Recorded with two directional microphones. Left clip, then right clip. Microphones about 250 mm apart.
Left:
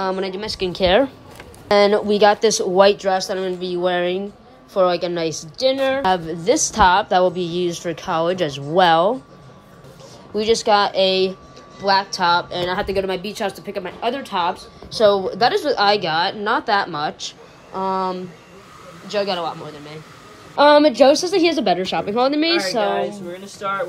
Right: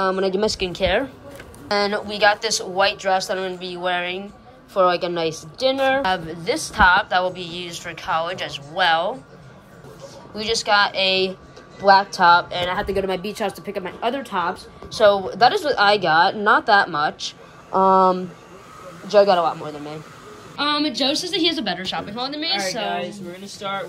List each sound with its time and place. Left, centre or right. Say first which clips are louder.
0.0 s a woman's voice: right 3 dB; centre
0.7 s a woman's voice: left 5 dB; centre
10.3 s a woman's voice: left 3 dB; left
12.8 s a woman's voice: left 1 dB; centre
15.0 s a woman's voice: even; centre